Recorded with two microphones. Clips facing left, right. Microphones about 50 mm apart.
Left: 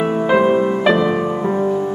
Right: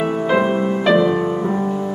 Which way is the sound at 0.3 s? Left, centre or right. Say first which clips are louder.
Left 4 dB; centre.